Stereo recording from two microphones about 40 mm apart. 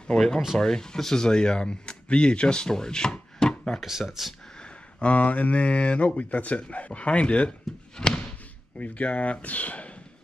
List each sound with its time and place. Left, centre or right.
0.0 s speech: centre
4.2 s speech: centre
5.0 s speech: left
8.0 s slam: centre
8.7 s speech: left